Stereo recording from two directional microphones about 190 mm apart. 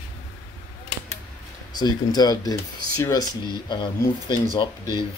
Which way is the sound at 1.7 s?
20° left (ahead or behind).